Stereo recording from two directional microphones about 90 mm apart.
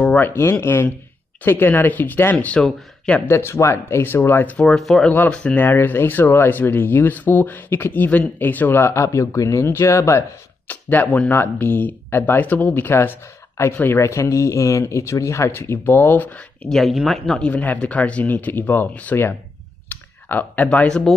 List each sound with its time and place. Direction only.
0.2 s speech: 25° left (ahead or behind)
3.3 s speech: 25° left (ahead or behind)
4.6 s speech: 5° left (ahead or behind)
5.7 s speech: 25° left (ahead or behind)
10.7 s speech: 20° left (ahead or behind)
16.6 s speech: centre (ahead or behind)
17.5 s speech: 15° left (ahead or behind)